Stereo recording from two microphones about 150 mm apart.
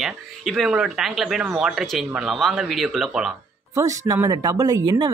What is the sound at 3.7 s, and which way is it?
Speech, 20° right (ahead or behind).